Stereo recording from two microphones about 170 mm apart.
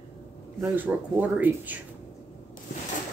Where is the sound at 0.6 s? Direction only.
10° right (ahead or behind).